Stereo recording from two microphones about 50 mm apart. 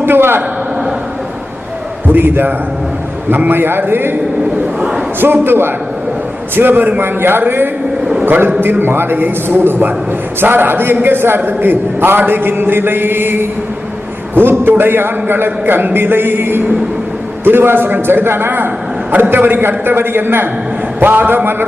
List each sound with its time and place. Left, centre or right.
0.0 s a man's voice: right
2.1 s a man's voice: right
5.2 s a man's voice: right